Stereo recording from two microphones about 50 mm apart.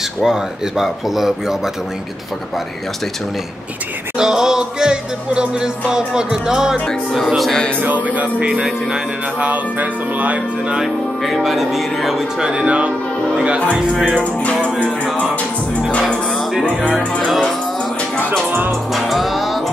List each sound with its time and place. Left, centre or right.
0.2 s music: centre
4.2 s music: centre
7.8 s music: right
10.8 s speech: centre
12.4 s speech: centre
14.4 s music: left
18.9 s music: centre